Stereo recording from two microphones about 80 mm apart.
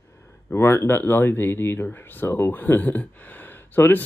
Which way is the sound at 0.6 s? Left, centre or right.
Left.